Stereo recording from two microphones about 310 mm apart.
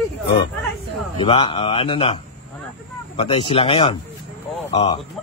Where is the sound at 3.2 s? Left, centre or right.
Centre.